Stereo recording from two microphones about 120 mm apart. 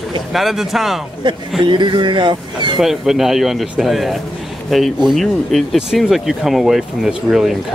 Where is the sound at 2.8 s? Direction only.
5° right (ahead or behind).